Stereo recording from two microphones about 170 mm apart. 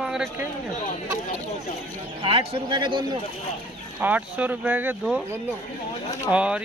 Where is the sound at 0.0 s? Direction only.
5° right (ahead or behind).